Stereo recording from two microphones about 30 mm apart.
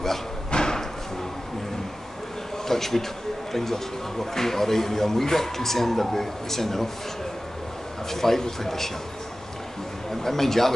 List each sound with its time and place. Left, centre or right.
0.5 s slam: left
2.7 s a man's voice: centre
8.1 s a man's voice: centre
10.2 s a man's voice: centre